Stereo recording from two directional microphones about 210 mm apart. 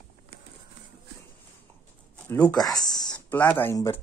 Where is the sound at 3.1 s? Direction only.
5° left (ahead or behind).